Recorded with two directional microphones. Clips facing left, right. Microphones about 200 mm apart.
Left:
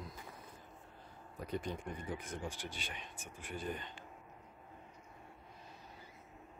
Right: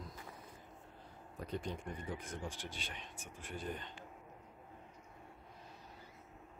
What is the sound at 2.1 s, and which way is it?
Speech, centre (ahead or behind).